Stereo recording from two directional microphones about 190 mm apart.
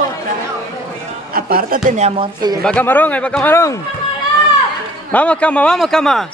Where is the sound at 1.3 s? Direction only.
50° right (ahead or behind).